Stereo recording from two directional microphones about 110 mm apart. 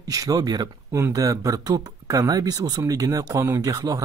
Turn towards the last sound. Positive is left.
turn(degrees=-35)  # may be behind; listen again after turning